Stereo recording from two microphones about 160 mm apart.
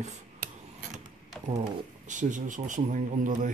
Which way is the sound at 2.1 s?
50° right (ahead or behind).